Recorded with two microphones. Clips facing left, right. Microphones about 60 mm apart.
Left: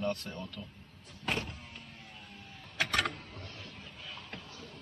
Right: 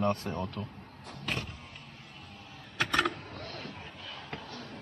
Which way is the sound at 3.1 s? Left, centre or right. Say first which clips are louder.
Right 5 dB; right.